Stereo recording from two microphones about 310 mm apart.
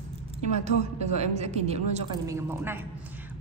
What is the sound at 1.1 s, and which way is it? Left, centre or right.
A woman's voice, right.